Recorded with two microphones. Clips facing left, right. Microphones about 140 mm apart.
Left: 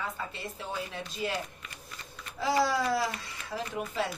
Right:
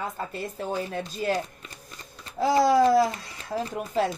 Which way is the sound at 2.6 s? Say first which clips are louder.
Right 11 dB; 45° right (ahead or behind).